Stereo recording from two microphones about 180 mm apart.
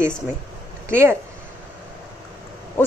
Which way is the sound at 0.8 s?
15° right (ahead or behind).